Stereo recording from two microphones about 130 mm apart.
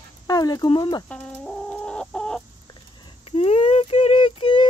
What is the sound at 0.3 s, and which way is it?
Speech, 30° left (ahead or behind).